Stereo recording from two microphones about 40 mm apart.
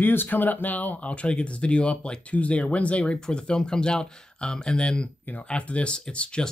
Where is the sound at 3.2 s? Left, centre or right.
Centre.